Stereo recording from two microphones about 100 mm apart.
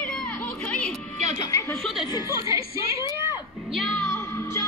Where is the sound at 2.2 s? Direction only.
35° right (ahead or behind).